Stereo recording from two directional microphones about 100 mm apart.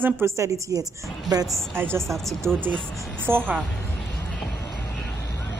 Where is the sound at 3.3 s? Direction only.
20° right (ahead or behind).